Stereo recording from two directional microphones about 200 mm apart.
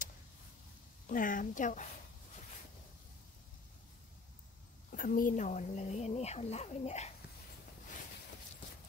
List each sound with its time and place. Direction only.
1.0 s speech: 40° left (ahead or behind)
4.9 s speech: 45° left (ahead or behind)